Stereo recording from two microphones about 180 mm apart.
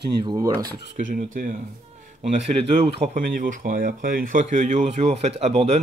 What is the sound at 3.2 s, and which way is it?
Speech, 50° right (ahead or behind).